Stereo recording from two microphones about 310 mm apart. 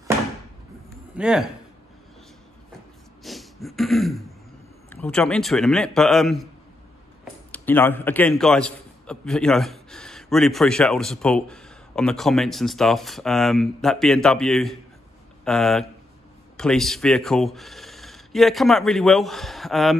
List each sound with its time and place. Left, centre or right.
1.1 s speech: centre
3.3 s a sound: centre
4.8 s a man's voice: centre
7.5 s a man's voice: centre